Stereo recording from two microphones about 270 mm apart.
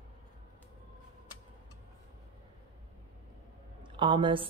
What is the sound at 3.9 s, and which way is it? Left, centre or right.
Speech, centre.